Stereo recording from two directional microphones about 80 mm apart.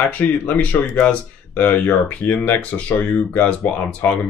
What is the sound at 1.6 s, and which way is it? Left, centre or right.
Speech, left.